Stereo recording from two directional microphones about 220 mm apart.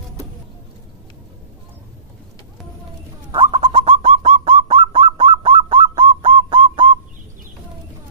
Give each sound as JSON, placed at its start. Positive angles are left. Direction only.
{"t": 3.3, "sound": "bird", "side_deg": -25}